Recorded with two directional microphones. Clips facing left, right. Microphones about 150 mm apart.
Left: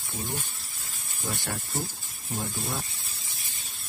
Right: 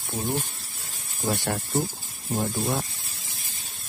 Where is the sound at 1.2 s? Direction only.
60° right (ahead or behind).